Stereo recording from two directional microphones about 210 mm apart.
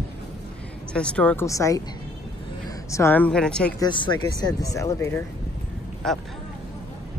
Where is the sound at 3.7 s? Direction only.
20° left (ahead or behind); by 6.2 s centre (ahead or behind).